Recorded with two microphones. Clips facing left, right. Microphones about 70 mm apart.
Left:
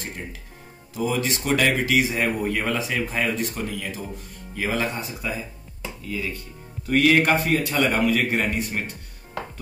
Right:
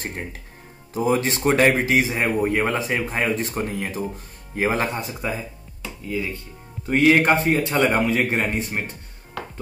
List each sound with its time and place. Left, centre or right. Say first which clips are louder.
0.9 s speech: right 4 dB; right
6.9 s speech: right 2 dB; right